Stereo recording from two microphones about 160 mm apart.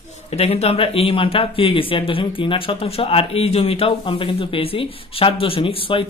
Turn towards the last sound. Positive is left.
turn(degrees=35)  # may be behind; listen again after turning